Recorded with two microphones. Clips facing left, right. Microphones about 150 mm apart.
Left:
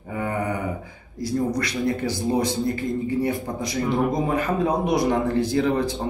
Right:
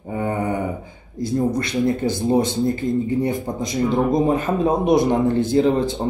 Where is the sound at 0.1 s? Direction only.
25° right (ahead or behind).